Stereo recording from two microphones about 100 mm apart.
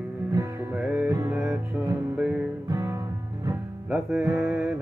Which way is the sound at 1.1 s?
30° right (ahead or behind).